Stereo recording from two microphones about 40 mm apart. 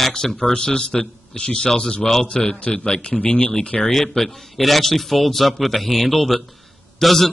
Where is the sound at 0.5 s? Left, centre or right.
Left.